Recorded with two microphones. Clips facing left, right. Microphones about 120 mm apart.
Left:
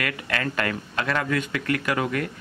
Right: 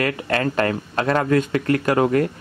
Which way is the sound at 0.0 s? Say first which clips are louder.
Right 7 dB; 35° right (ahead or behind).